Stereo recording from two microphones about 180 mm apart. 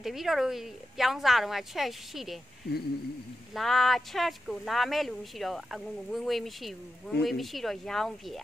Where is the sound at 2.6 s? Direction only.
60° left (ahead or behind).